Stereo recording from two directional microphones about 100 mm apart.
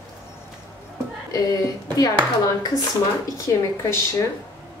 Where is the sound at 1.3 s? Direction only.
40° left (ahead or behind).